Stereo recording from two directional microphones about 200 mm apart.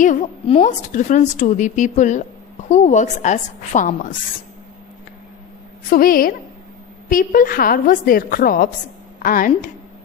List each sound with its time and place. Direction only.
0.0 s a woman's voice: 35° left (ahead or behind)
5.9 s a woman's voice: 45° left (ahead or behind)